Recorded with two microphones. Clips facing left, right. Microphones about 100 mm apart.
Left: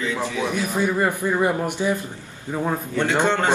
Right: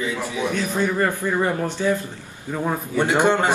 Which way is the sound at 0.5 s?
10° left (ahead or behind).